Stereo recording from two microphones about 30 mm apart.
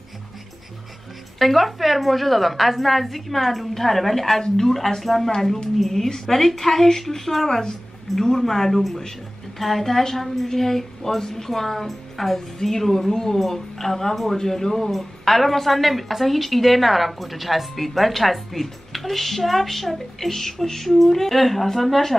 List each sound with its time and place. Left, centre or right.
1.4 s a woman's voice: centre